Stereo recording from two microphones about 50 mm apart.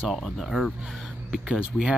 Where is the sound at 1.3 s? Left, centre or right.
Centre.